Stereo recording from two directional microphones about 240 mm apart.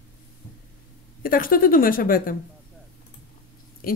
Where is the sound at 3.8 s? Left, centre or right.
Left.